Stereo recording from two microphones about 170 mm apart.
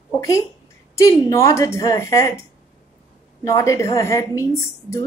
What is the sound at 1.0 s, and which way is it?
A woman's voice, 20° left (ahead or behind).